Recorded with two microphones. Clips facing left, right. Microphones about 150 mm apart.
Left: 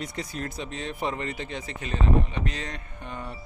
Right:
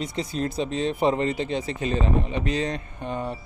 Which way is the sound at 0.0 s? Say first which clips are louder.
Right 6 dB; 25° right (ahead or behind).